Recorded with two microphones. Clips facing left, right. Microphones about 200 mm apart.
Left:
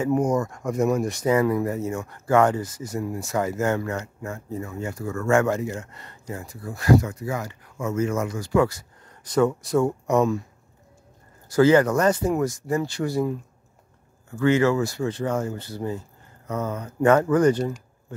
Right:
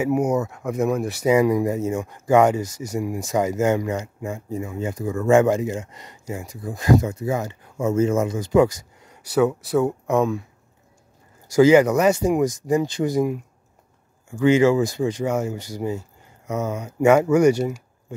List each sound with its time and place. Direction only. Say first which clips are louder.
0.0 s speech: right 1 dB; 10° right (ahead or behind)
11.5 s speech: right 3 dB; 15° right (ahead or behind)